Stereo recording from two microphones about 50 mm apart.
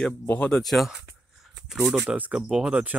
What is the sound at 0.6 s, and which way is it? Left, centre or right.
Speech, centre.